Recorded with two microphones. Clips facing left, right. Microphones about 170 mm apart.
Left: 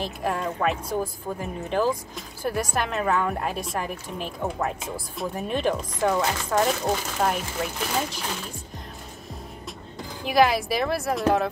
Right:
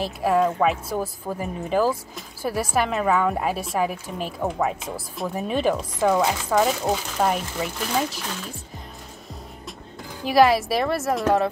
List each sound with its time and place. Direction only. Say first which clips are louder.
0.0 s a woman's voice: right 7 dB; 5° right (ahead or behind)
10.2 s a woman's voice: right 3 dB; centre (ahead or behind)